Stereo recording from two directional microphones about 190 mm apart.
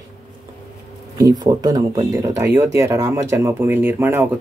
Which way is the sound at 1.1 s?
20° right (ahead or behind).